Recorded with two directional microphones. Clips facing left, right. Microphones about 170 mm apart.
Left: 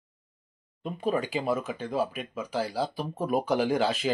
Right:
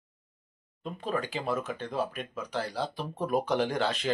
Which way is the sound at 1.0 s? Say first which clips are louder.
Left 4 dB; 10° left (ahead or behind).